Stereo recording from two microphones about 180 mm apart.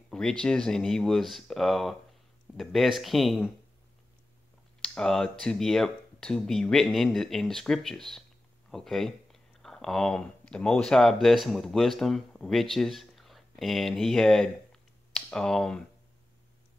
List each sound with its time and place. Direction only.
0.1 s speech: 5° left (ahead or behind)
4.8 s speech: 5° left (ahead or behind)